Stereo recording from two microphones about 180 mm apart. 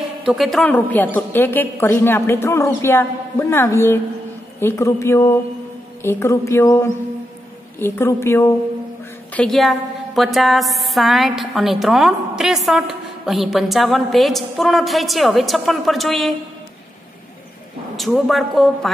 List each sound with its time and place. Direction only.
0.2 s a woman's voice: centre (ahead or behind); by 8.5 s 15° left (ahead or behind)
9.3 s a woman's voice: 5° left (ahead or behind)
17.9 s a woman's voice: centre (ahead or behind)